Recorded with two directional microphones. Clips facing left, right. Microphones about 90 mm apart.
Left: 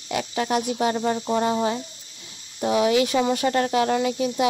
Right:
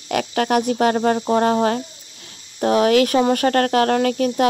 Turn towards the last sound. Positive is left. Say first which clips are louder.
# right 4 dB
turn(degrees=-60)  # may be behind; listen again after turning